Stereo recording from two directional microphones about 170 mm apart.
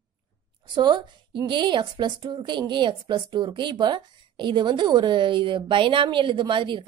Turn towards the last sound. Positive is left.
turn(degrees=-30)  # may be behind; listen again after turning